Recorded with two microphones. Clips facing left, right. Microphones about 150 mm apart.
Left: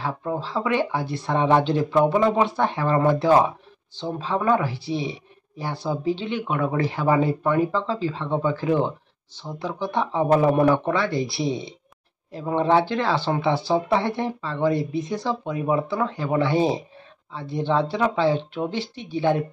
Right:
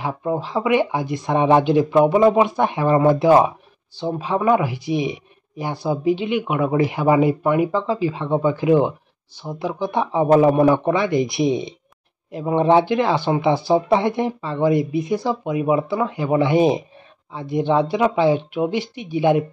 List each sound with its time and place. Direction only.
0.0 s speech: 15° right (ahead or behind)